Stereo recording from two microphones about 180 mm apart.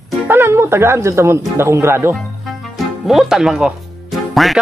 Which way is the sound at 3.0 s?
Centre (ahead or behind).